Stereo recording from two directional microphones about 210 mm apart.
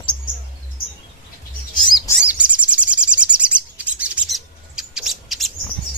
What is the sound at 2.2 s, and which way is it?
Bird, 5° right (ahead or behind).